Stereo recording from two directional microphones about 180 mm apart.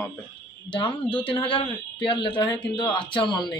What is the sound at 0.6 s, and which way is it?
A man's voice, 30° left (ahead or behind).